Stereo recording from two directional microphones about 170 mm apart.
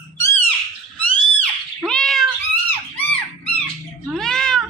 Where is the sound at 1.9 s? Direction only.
5° left (ahead or behind).